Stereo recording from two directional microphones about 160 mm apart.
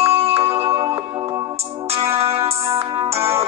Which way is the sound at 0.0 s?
40° right (ahead or behind).